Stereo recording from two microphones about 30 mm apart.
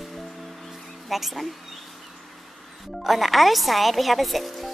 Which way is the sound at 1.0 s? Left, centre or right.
Centre.